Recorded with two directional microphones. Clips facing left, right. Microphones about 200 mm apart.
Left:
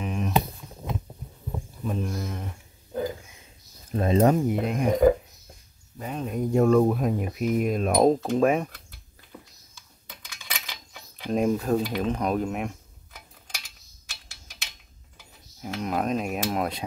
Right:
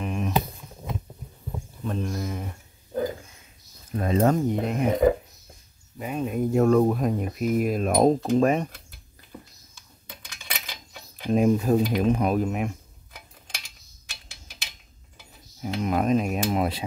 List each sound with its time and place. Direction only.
0.0 s a sound: centre (ahead or behind)
1.9 s speech: centre (ahead or behind)
3.9 s speech: 25° left (ahead or behind)
4.3 s speech: 5° left (ahead or behind)
5.9 s speech: 10° right (ahead or behind)
11.2 s speech: 5° right (ahead or behind)
15.6 s speech: centre (ahead or behind)